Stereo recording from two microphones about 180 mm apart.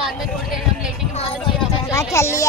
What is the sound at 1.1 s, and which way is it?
Speech, 30° left (ahead or behind).